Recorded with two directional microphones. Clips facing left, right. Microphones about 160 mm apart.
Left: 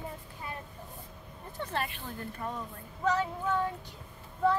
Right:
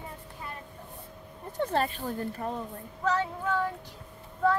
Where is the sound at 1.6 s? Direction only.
45° right (ahead or behind).